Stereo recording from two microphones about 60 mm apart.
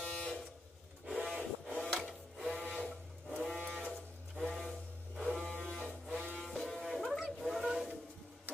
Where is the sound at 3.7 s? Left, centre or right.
Centre.